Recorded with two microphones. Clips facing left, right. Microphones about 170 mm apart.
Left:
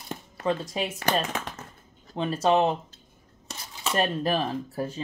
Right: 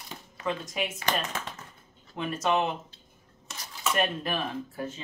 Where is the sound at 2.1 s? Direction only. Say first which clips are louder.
Left 5 dB; 30° left (ahead or behind).